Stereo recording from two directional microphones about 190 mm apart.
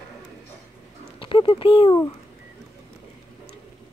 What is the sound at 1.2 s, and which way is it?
Speech, 25° left (ahead or behind).